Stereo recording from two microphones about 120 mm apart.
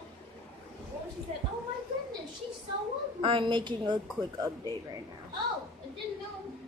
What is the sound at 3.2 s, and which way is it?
A woman's voice, 45° right (ahead or behind).